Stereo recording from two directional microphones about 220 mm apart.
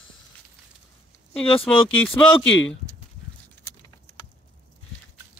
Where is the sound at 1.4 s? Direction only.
25° left (ahead or behind).